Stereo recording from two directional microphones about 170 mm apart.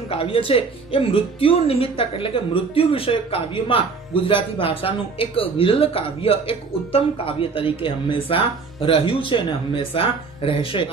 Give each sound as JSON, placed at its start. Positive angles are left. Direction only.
{"t": 0.1, "sound": "speech", "side_deg": 30}